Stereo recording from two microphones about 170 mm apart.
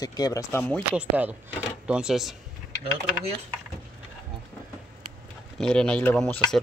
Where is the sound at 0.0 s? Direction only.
20° left (ahead or behind).